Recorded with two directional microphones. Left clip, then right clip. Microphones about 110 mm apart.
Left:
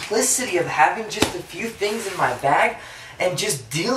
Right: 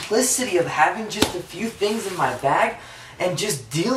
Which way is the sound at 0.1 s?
Centre (ahead or behind).